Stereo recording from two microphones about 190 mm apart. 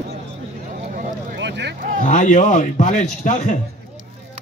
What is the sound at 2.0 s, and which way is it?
A man's voice, 45° left (ahead or behind).